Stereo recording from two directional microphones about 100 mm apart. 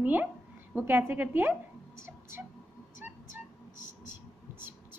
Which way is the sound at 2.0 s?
25° right (ahead or behind).